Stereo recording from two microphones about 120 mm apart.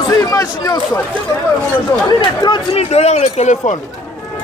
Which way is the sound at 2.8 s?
65° left (ahead or behind).